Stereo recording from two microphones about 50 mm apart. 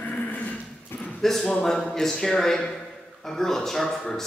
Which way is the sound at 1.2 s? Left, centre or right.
Centre.